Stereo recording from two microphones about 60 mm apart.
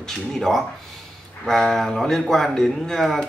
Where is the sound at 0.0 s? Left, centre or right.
Centre.